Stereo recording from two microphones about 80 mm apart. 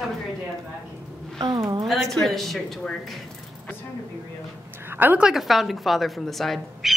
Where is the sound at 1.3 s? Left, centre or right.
Right.